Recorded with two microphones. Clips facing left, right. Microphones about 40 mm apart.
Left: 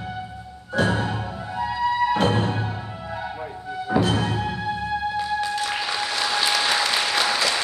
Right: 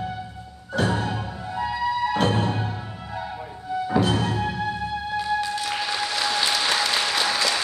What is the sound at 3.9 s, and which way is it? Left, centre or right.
Music, centre.